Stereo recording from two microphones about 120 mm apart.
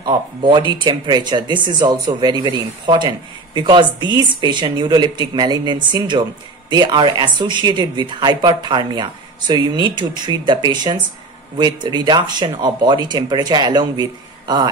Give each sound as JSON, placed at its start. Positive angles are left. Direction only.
{"t": 0.0, "sound": "a man's voice", "side_deg": -40}